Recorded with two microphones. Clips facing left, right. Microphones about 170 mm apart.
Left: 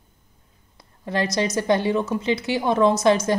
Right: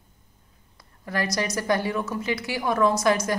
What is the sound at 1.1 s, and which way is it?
A woman's voice, 25° left (ahead or behind).